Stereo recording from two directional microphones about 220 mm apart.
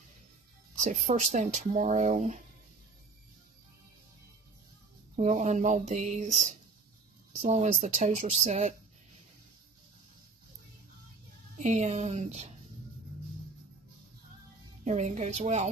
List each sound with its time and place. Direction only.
0.7 s speech: 35° right (ahead or behind)
5.1 s speech: 30° right (ahead or behind)
11.5 s speech: 30° right (ahead or behind)
14.9 s speech: 30° right (ahead or behind)